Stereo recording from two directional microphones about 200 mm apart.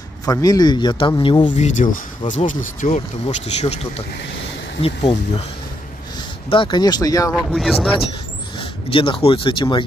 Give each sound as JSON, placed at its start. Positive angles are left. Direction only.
{"t": 0.2, "sound": "a man's voice", "side_deg": 20}
{"t": 1.6, "sound": "a man's voice", "side_deg": 40}
{"t": 6.5, "sound": "a man's voice", "side_deg": 25}
{"t": 7.5, "sound": "speech", "side_deg": 0}
{"t": 8.9, "sound": "a man's voice", "side_deg": 25}